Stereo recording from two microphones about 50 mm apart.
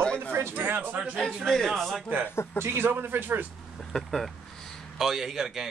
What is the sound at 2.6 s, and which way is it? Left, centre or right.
Speech, right.